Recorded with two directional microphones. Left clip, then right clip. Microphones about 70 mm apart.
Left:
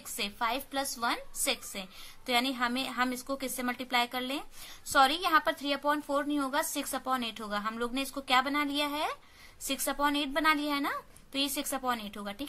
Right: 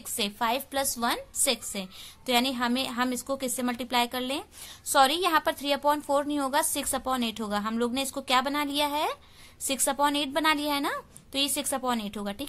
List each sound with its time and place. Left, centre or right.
0.2 s a woman's voice: right
1.4 s a woman's voice: right